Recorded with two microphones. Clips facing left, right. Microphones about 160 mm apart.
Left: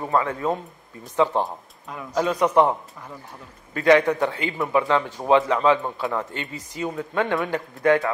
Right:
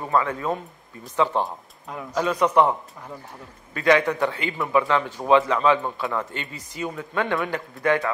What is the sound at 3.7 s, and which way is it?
A man's voice, 35° left (ahead or behind).